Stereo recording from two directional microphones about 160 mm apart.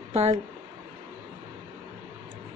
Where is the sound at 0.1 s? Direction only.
40° right (ahead or behind).